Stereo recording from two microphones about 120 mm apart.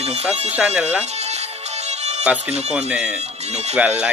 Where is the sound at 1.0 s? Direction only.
65° right (ahead or behind).